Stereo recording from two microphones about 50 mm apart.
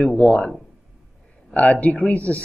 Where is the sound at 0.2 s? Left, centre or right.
Left.